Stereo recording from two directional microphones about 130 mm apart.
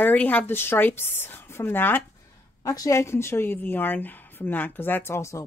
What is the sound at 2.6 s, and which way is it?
A woman's voice, 25° left (ahead or behind).